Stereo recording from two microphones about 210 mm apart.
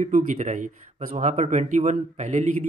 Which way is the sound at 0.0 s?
35° right (ahead or behind).